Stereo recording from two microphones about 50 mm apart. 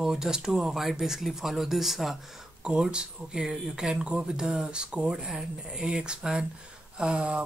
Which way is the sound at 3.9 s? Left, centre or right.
Centre.